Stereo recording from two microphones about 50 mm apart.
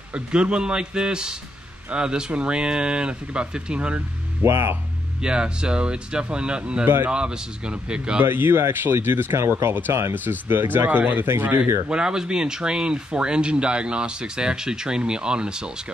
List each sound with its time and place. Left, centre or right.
0.1 s speech: centre
4.4 s speech: right
5.2 s speech: centre
8.3 s speech: right
11.9 s speech: centre